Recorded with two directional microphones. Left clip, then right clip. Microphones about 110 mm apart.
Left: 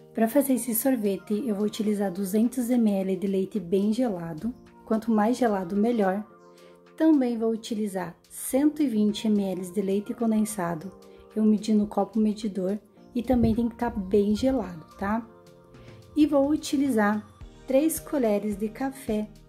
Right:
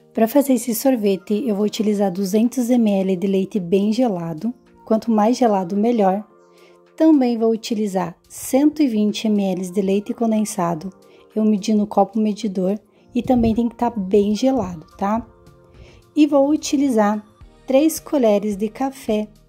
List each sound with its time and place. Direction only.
0.2 s speech: 90° right; by 6.2 s 50° right (ahead or behind)
7.0 s a woman's voice: 65° right (ahead or behind)
16.2 s speech: 45° right (ahead or behind)
17.6 s a woman's voice: 65° right (ahead or behind)